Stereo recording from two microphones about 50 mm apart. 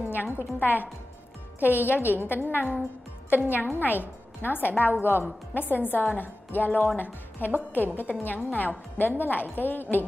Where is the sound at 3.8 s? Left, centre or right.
Left.